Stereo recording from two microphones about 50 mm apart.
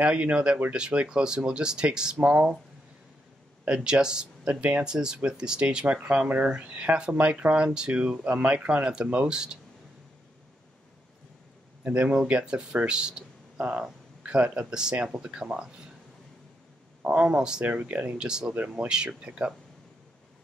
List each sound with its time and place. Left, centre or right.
0.0 s speech: right
3.6 s speech: centre
11.8 s speech: right
17.1 s speech: right
17.6 s speech: right
18.2 s speech: centre